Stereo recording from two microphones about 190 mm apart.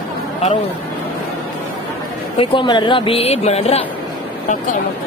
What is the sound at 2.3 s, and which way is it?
Speech, 25° left (ahead or behind).